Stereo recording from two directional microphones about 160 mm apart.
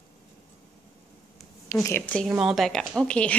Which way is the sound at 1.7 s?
20° left (ahead or behind).